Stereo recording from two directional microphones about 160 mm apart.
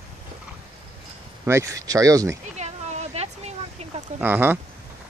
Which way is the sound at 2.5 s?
45° right (ahead or behind).